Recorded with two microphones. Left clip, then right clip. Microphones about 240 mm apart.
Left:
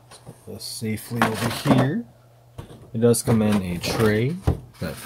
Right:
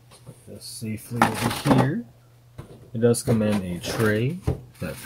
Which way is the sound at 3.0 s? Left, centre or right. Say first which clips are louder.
Left 2 dB; left.